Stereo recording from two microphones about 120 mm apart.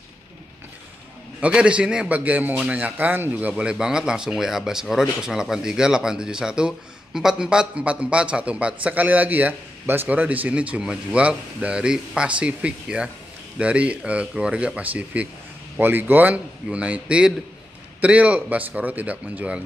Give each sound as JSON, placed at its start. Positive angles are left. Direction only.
{"t": 1.4, "sound": "a man's voice", "side_deg": -10}